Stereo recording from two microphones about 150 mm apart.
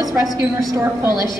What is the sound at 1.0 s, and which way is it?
Speech, 30° left (ahead or behind).